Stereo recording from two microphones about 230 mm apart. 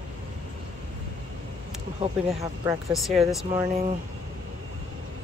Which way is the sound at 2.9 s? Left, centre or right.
Centre.